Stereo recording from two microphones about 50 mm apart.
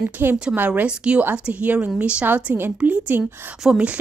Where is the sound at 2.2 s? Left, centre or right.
Right.